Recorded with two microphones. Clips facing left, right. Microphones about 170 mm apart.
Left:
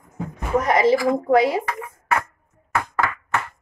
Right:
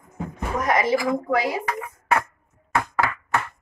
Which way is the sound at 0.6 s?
25° left (ahead or behind).